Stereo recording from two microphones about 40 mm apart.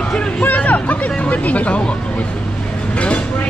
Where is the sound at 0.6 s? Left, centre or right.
Left.